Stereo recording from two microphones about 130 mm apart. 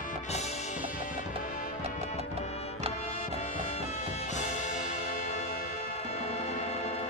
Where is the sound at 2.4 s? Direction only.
55° left (ahead or behind).